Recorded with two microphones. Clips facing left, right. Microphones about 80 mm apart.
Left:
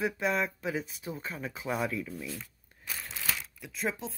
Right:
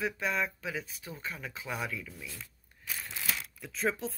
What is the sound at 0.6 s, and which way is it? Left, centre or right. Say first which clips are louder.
Speech: left 4 dB; left.